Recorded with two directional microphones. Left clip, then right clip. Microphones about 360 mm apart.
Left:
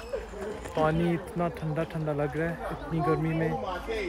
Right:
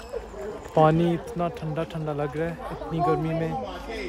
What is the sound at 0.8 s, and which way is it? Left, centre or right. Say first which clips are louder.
Speech: right 7 dB; right.